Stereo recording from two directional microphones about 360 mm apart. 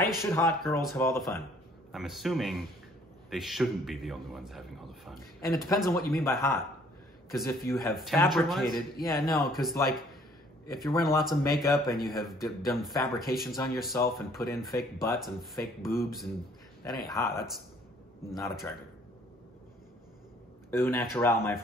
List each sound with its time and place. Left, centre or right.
0.2 s a man's voice: centre
8.6 s a man's voice: left
9.1 s a man's voice: centre
18.3 s a man's voice: centre
20.7 s speech: centre